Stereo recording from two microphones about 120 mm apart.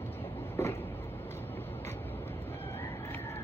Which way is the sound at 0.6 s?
25° left (ahead or behind).